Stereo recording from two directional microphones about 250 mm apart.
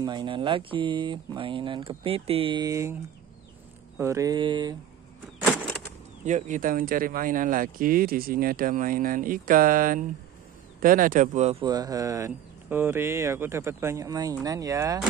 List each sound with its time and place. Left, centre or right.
0.0 s speech: centre
4.0 s speech: centre
5.4 s a sound: centre
6.2 s speech: right; by 15.0 s centre